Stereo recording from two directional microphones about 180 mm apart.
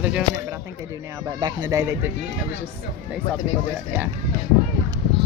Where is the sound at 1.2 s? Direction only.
20° right (ahead or behind).